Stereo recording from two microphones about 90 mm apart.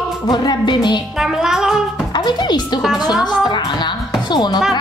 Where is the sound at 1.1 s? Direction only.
5° right (ahead or behind).